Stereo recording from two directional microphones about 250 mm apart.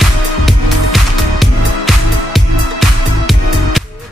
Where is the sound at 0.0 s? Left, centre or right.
Centre.